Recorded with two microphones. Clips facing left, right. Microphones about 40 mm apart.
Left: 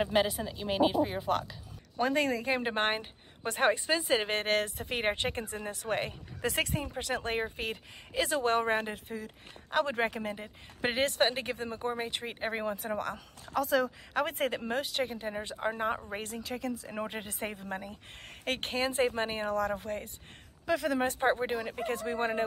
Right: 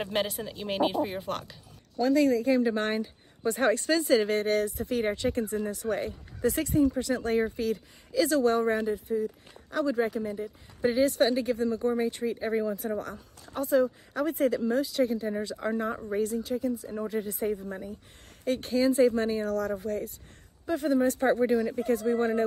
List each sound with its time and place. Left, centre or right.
0.0 s speech: centre
2.0 s speech: left
3.7 s speech: centre
4.1 s speech: left
13.6 s speech: left
14.1 s speech: left
15.5 s speech: left
16.1 s speech: left
20.6 s speech: left
21.0 s speech: left
21.7 s speech: left